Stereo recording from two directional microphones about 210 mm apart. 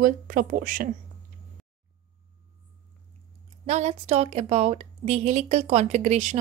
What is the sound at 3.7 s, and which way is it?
Speech, 30° right (ahead or behind).